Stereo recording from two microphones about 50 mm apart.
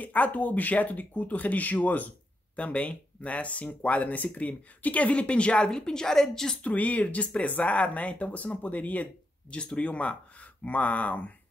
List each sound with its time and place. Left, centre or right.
0.0 s speech: left; by 6.6 s centre
6.6 s speech: left
9.0 s speech: centre